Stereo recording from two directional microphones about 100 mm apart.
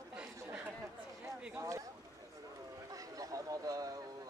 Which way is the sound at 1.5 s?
30° right (ahead or behind).